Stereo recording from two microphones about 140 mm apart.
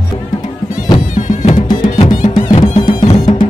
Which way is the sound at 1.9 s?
55° left (ahead or behind).